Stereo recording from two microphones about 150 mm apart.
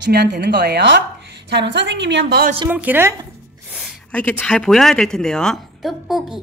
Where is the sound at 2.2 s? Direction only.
90° right.